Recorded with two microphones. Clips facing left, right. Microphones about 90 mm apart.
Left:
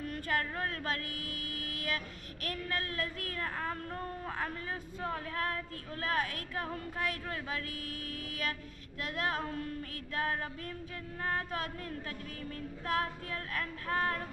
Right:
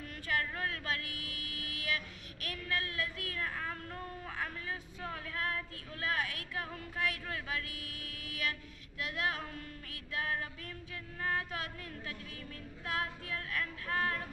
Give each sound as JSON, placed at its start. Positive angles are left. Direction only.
{"t": 0.1, "sound": "a sound", "side_deg": 40}
{"t": 2.4, "sound": "a woman's voice", "side_deg": 40}
{"t": 11.3, "sound": "a woman's voice", "side_deg": 40}